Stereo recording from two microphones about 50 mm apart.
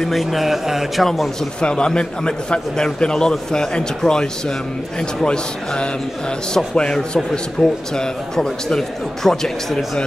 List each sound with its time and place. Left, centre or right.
0.1 s speech: centre
1.6 s a man's voice: centre
7.6 s speech: centre
7.9 s a man's voice: centre